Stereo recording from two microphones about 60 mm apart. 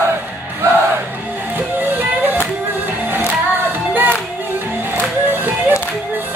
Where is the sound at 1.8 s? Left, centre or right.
Right.